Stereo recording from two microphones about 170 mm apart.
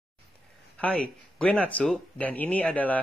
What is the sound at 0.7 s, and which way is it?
Speech, 5° left (ahead or behind).